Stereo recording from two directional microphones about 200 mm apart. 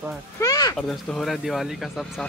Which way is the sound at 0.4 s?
20° left (ahead or behind).